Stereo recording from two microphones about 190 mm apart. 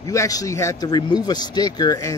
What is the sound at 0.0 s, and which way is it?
A man's voice, 15° left (ahead or behind).